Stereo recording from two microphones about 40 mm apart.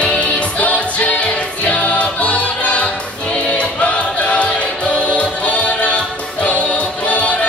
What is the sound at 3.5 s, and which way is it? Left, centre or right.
Choir, left.